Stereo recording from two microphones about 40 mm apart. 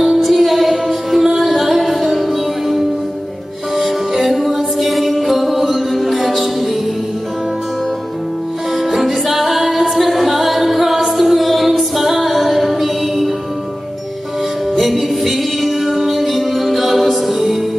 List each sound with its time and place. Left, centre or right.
0.0 s music: centre
8.7 s music: centre
14.8 s music: centre